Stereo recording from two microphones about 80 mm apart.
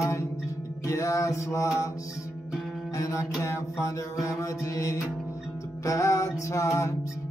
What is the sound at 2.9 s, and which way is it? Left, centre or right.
Music, left.